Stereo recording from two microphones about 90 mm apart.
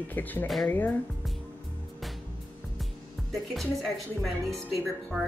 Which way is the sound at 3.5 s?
Centre (ahead or behind).